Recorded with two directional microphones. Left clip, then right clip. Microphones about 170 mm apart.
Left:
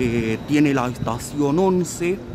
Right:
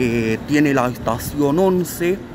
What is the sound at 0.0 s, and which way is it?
A man's voice, 5° left (ahead or behind).